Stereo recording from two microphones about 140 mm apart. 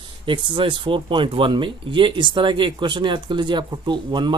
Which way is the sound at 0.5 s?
35° right (ahead or behind).